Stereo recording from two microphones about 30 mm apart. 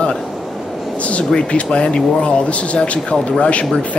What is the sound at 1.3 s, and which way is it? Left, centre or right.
Speech, left.